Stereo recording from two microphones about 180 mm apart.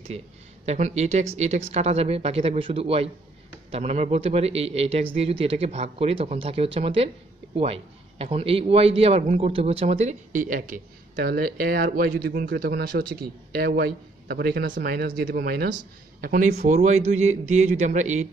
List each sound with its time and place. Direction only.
0.7 s a man's voice: 40° right (ahead or behind)
11.1 s a man's voice: 60° right (ahead or behind); by 18.3 s 40° right (ahead or behind)